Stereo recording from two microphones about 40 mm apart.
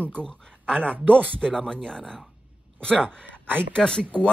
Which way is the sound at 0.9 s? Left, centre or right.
Right.